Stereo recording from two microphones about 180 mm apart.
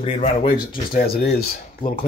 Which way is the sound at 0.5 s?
50° left (ahead or behind).